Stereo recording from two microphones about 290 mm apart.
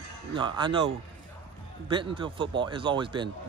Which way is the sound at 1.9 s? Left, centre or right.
Centre.